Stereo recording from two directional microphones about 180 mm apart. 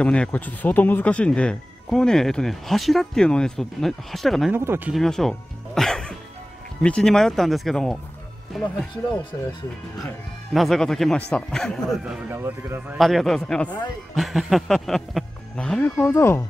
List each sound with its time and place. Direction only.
0.0 s speech: 5° left (ahead or behind)
4.6 s speech: 10° right (ahead or behind)
4.9 s speech: centre (ahead or behind)
5.8 s music: 5° left (ahead or behind)
6.8 s speech: 5° left (ahead or behind)
10.5 s speech: centre (ahead or behind)